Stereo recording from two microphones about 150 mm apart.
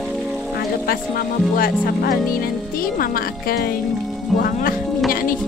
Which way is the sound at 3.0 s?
75° left (ahead or behind).